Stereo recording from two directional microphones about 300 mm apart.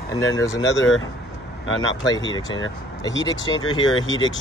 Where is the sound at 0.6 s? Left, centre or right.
Left.